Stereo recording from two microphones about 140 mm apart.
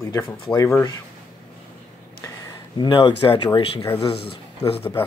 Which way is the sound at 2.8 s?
35° left (ahead or behind).